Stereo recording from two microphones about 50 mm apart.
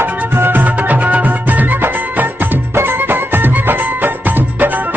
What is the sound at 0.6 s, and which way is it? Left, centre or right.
Music, right.